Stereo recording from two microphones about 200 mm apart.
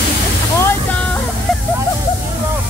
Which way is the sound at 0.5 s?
15° left (ahead or behind).